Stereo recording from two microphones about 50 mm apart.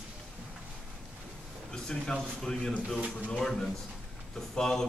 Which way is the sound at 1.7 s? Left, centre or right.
Centre.